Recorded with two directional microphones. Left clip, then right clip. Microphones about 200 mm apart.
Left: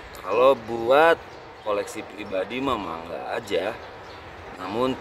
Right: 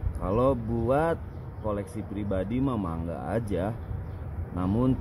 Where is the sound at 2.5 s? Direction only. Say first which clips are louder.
Left 4 dB; 15° left (ahead or behind).